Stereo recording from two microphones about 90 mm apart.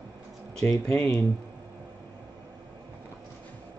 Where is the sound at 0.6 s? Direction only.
35° left (ahead or behind).